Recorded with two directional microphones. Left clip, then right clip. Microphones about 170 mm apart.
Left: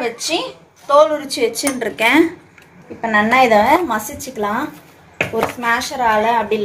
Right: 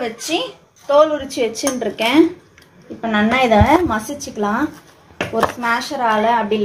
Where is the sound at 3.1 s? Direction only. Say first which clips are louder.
Left 3 dB; 35° right (ahead or behind).